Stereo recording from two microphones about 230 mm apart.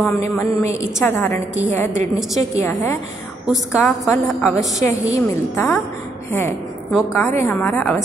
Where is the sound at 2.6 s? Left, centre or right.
Centre.